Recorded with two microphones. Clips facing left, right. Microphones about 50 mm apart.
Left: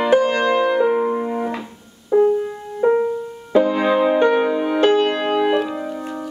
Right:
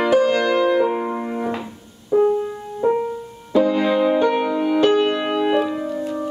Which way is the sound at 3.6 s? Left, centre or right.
Left.